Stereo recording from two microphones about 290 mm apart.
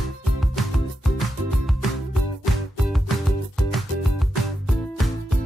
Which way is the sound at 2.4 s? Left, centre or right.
Centre.